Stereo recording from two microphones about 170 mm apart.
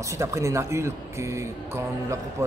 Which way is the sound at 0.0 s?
20° right (ahead or behind).